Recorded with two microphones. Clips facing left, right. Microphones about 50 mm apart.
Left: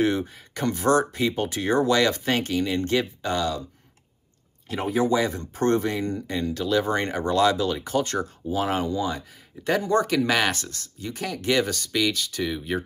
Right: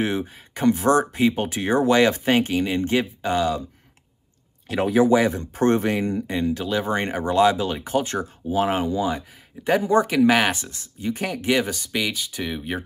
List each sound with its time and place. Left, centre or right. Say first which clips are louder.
0.0 s speech: left 1 dB; right
4.6 s speech: right 5 dB; right
5.1 s speech: right 5 dB; right